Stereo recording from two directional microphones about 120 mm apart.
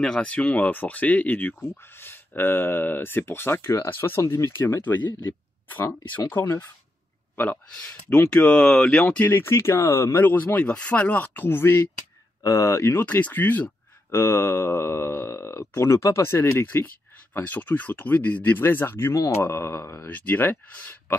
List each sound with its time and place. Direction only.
0.0 s speech: 10° left (ahead or behind)
6.3 s speech: 15° left (ahead or behind)